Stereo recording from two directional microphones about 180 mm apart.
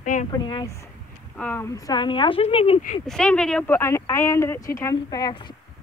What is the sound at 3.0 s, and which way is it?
Speech, 5° left (ahead or behind).